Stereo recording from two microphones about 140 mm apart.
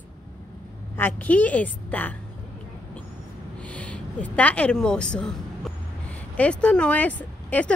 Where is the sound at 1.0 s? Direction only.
15° left (ahead or behind).